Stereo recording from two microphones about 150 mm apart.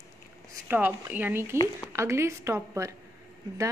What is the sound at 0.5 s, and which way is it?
A woman's voice, 15° right (ahead or behind).